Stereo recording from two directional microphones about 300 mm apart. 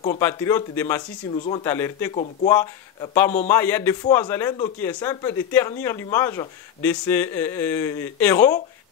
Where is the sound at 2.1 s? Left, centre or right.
Left.